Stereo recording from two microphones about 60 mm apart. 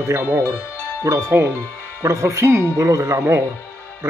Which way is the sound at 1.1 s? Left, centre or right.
Right.